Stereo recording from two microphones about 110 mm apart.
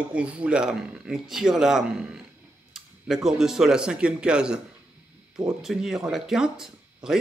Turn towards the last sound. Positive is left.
turn(degrees=-5)  # may be behind; listen again after turning